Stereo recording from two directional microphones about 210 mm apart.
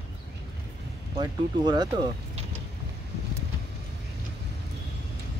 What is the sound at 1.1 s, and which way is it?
Speech, 20° right (ahead or behind).